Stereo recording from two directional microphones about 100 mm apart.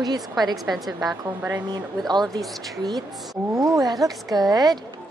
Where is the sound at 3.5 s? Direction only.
40° right (ahead or behind).